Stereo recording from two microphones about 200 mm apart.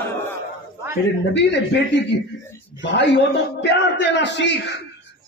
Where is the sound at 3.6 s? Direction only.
60° left (ahead or behind).